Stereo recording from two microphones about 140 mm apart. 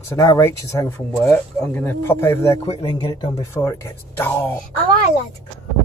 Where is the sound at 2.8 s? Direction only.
35° left (ahead or behind).